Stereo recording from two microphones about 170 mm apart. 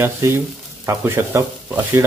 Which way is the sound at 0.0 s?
15° right (ahead or behind).